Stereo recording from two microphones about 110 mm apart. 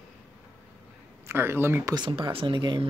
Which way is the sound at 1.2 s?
25° right (ahead or behind).